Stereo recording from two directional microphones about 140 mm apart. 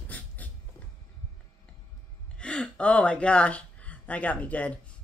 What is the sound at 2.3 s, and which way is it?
Speech, 5° left (ahead or behind).